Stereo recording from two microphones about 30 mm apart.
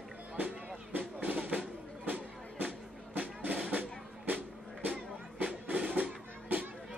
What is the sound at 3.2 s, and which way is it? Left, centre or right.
Drum, right.